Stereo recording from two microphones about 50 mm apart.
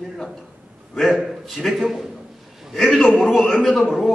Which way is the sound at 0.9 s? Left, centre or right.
Centre.